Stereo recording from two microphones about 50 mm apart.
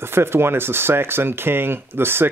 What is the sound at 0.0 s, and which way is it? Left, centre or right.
Speech, right.